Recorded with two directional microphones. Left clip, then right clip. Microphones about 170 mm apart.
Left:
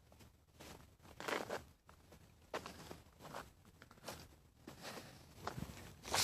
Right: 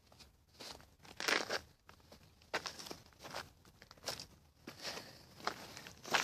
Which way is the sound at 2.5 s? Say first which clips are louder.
Right 6 dB; 45° right (ahead or behind).